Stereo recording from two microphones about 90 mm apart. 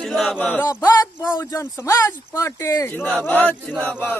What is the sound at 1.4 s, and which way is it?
Speech, 30° left (ahead or behind).